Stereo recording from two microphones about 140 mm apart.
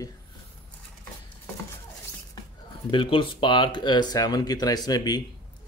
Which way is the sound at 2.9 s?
35° left (ahead or behind).